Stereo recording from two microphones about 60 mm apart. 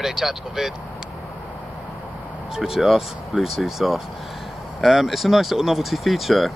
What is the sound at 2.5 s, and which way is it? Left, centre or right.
Speech, centre.